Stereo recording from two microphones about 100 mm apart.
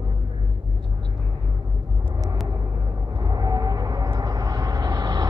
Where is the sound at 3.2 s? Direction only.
40° right (ahead or behind).